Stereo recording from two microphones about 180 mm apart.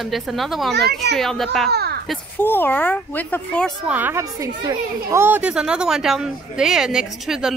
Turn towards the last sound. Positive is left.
turn(degrees=-5)  # may be behind; listen again after turning